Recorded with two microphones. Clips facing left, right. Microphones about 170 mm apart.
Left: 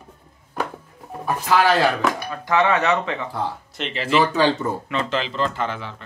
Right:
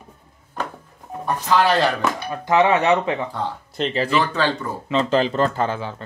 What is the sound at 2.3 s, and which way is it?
Speech, 25° right (ahead or behind).